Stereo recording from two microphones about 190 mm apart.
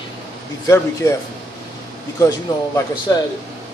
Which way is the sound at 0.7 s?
15° left (ahead or behind).